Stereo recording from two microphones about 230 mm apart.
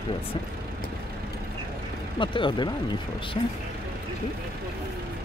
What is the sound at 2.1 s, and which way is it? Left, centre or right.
Speech, left.